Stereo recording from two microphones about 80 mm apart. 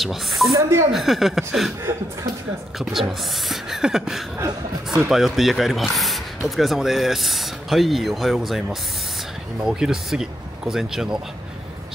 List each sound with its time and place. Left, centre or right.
0.0 s speech: centre
0.5 s speech: right
0.9 s speech: centre
2.8 s speech: centre